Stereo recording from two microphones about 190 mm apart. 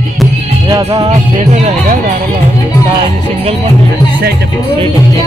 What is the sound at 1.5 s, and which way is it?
Speech, 40° right (ahead or behind).